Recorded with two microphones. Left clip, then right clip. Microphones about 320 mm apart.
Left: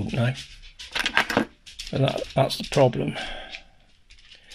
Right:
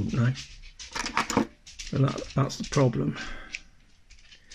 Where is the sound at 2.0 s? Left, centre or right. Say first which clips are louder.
Left 7 dB; left.